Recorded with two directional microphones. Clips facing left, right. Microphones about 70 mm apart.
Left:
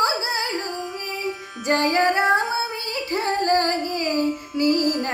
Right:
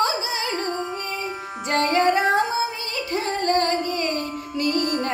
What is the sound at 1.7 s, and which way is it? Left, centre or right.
Music, left.